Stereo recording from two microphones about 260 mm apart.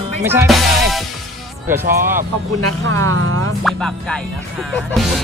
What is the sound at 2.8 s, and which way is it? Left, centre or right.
Speech, right.